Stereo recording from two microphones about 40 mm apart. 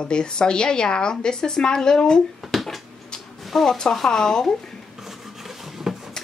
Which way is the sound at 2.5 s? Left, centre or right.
Centre.